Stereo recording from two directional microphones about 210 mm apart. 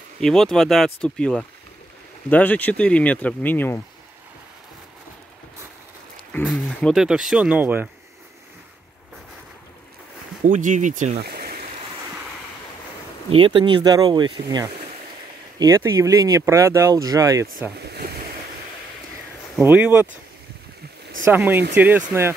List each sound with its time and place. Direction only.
0.2 s speech: centre (ahead or behind)
6.3 s speech: 5° left (ahead or behind)
10.4 s speech: 35° right (ahead or behind)
11.1 s stream: 50° right (ahead or behind)
13.3 s speech: 25° right (ahead or behind)
15.6 s speech: 15° right (ahead or behind)
17.8 s ocean: 50° right (ahead or behind)
19.6 s speech: 5° right (ahead or behind)
21.3 s speech: 10° right (ahead or behind)